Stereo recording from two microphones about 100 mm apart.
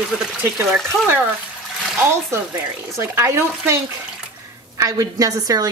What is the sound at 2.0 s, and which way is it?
A woman's voice, 25° right (ahead or behind).